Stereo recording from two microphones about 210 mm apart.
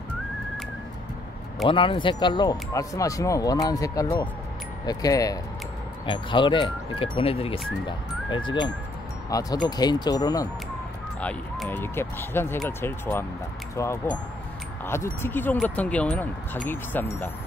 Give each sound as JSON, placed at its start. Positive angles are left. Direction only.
{"t": 1.7, "sound": "speech", "side_deg": 25}
{"t": 11.1, "sound": "speech", "side_deg": 5}